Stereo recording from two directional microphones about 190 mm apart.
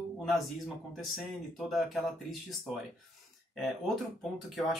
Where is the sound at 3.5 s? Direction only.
Centre (ahead or behind).